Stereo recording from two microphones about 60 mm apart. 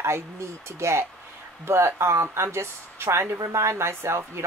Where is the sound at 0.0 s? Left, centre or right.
Right.